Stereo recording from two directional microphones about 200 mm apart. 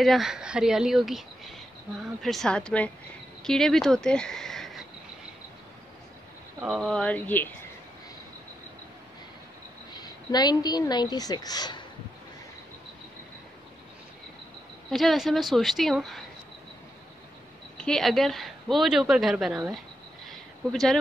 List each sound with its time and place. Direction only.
0.0 s a woman's voice: centre (ahead or behind)
6.6 s a woman's voice: centre (ahead or behind)
9.9 s a woman's voice: 20° left (ahead or behind)
14.9 s a woman's voice: centre (ahead or behind)
17.7 s a woman's voice: 5° left (ahead or behind)
20.2 s a sound: centre (ahead or behind)